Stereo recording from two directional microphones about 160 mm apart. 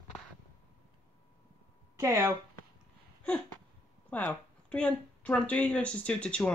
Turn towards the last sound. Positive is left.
turn(degrees=5)  # may be behind; listen again after turning